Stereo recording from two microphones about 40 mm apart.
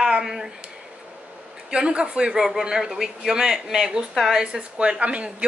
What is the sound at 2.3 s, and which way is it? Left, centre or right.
Speech, centre.